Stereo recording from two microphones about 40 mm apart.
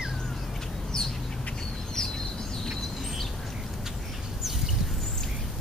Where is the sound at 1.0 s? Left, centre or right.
Centre.